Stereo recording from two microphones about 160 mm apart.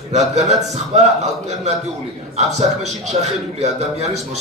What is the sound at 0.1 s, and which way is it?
Speech, 45° right (ahead or behind).